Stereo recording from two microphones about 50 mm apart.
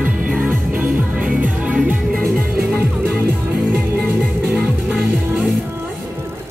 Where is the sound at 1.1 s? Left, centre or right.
Right.